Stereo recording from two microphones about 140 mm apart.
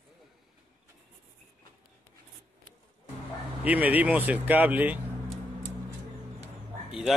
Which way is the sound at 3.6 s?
10° right (ahead or behind).